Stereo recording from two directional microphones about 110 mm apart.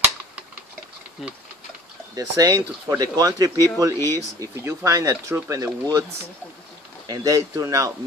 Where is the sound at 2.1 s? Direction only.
30° right (ahead or behind).